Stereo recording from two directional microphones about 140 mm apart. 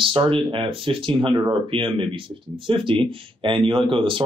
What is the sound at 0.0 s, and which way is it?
Speech, 40° right (ahead or behind).